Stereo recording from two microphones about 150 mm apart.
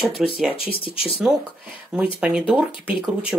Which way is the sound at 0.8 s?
40° left (ahead or behind).